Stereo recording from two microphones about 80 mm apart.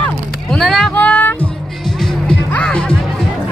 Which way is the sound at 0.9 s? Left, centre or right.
Left.